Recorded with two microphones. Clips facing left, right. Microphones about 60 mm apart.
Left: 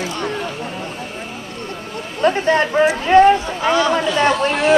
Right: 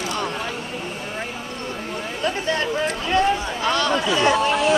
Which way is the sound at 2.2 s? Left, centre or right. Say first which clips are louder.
Left 8 dB; left.